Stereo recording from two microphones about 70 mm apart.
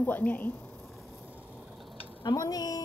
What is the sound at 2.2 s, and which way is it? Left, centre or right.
Speech, left.